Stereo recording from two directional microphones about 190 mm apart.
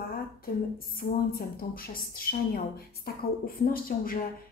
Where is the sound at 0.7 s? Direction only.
50° left (ahead or behind).